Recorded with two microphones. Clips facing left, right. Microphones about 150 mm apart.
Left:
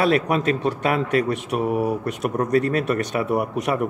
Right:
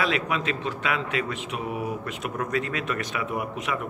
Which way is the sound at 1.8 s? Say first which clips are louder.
Left 8 dB; 35° left (ahead or behind).